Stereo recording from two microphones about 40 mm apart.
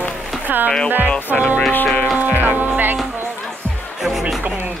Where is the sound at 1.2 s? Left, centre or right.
Left.